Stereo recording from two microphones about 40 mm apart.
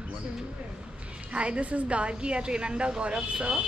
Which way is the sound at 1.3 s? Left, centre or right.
Right.